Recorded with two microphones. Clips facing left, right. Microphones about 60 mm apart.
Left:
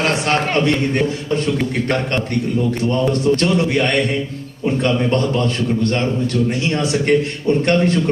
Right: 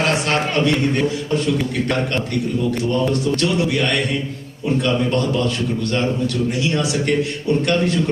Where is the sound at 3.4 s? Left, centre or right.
Left.